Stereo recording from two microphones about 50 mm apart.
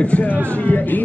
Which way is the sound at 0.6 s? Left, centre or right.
Left.